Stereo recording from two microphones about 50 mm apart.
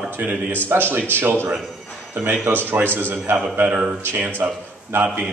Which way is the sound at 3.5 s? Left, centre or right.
Right.